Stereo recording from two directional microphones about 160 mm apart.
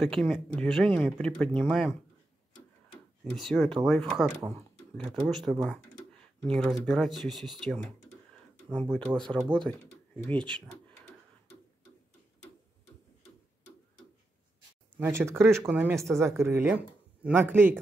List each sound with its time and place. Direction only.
0.0 s speech: centre (ahead or behind)
3.3 s speech: 5° left (ahead or behind)
8.9 s speech: 5° left (ahead or behind)
15.0 s speech: 15° right (ahead or behind)